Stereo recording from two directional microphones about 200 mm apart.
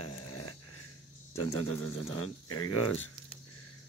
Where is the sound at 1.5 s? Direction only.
90° left.